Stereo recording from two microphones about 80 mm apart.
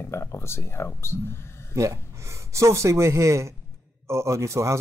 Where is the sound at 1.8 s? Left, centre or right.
Right.